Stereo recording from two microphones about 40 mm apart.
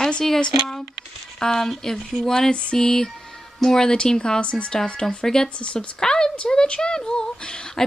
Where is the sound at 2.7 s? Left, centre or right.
Centre.